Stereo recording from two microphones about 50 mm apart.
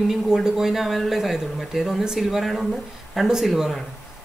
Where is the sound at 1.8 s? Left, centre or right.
Centre.